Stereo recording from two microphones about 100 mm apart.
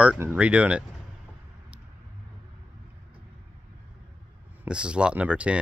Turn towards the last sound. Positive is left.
turn(degrees=-10)  # may be behind; listen again after turning